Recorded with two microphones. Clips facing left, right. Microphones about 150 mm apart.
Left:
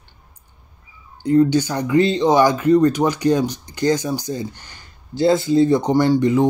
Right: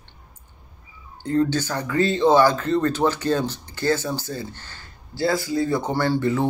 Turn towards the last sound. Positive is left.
turn(degrees=15)  # may be behind; listen again after turning